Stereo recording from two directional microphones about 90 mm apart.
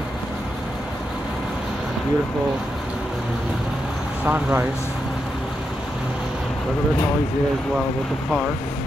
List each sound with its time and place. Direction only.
4.3 s speech: 15° right (ahead or behind)